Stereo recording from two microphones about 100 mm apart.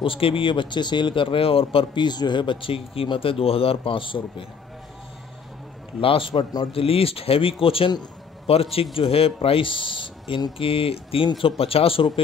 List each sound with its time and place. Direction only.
0.0 s a man's voice: 65° left (ahead or behind)
2.0 s a man's voice: 45° left (ahead or behind)
5.9 s a man's voice: 60° left (ahead or behind)